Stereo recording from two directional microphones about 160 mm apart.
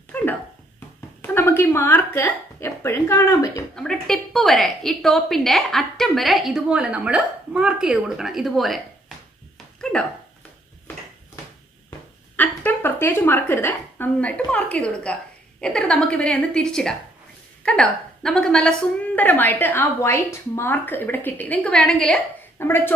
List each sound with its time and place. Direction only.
0.1 s a sound: 10° left (ahead or behind)
1.2 s speech: 15° left (ahead or behind)
3.7 s a woman's voice: 5° left (ahead or behind)
12.4 s a woman's voice: 10° left (ahead or behind)
22.6 s a woman's voice: 15° left (ahead or behind)